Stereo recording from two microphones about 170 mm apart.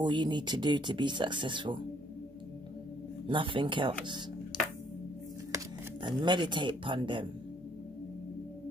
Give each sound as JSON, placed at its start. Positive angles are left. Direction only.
{"t": 0.0, "sound": "speech", "side_deg": -25}
{"t": 3.3, "sound": "speech", "side_deg": -30}
{"t": 6.0, "sound": "speech", "side_deg": -25}